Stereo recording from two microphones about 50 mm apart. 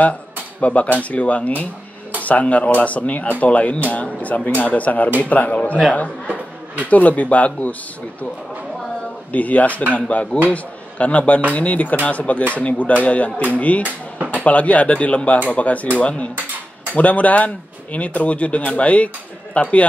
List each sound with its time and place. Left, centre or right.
0.0 s speech: left
6.9 s speech: left
9.3 s speech: left
13.8 s speech: right
14.4 s speech: left